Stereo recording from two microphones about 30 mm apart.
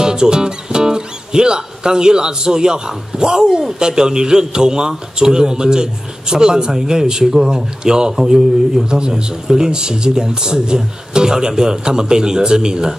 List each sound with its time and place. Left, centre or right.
0.0 s a man's voice: right
8.2 s speech: centre
8.8 s a man's voice: right